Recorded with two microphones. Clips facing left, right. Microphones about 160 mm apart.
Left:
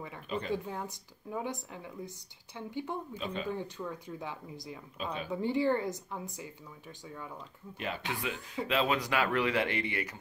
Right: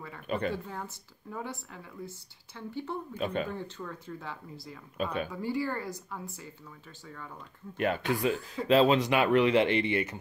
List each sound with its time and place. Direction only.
0.5 s a woman's voice: 15° left (ahead or behind)
3.2 s speech: 55° right (ahead or behind)
3.5 s a woman's voice: 15° left (ahead or behind)
4.9 s speech: 55° right (ahead or behind)
5.3 s speech: 20° left (ahead or behind)
7.7 s speech: 55° right (ahead or behind); by 10.1 s 25° right (ahead or behind)